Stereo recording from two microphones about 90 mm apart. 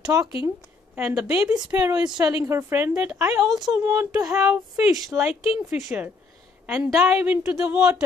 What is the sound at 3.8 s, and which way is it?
Speech, 40° right (ahead or behind).